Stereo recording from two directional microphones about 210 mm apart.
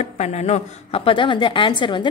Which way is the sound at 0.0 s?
30° left (ahead or behind).